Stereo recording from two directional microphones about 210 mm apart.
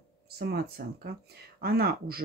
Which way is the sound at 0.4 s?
50° right (ahead or behind).